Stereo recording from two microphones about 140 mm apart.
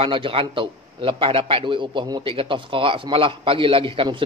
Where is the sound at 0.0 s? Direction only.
40° right (ahead or behind).